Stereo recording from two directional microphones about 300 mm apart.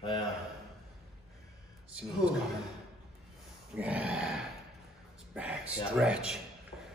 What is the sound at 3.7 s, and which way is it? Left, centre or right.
Speech, centre.